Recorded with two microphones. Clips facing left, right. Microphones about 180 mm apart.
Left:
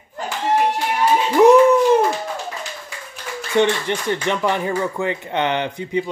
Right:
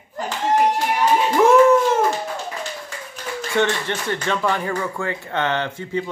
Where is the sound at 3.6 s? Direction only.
15° left (ahead or behind).